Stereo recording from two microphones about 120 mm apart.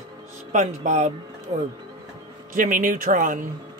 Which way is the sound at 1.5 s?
55° right (ahead or behind).